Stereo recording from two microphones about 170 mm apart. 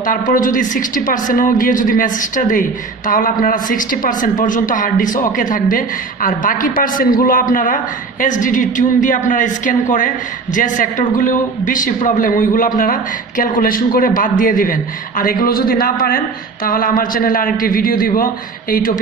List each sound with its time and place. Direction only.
0.0 s a woman's voice: 50° left (ahead or behind)